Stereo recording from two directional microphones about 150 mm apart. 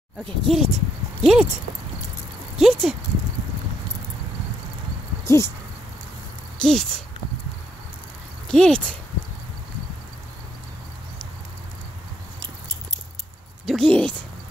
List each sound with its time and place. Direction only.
0.2 s speech: centre (ahead or behind)
2.5 s speech: centre (ahead or behind)
5.2 s a sound: 20° left (ahead or behind)
6.6 s speech: 5° left (ahead or behind)
8.5 s speech: 5° left (ahead or behind)
13.7 s a sound: 5° left (ahead or behind)